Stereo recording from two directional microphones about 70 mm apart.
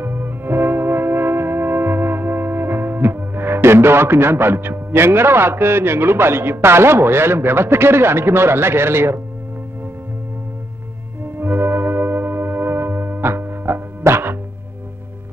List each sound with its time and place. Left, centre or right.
0.0 s music: right
11.3 s music: right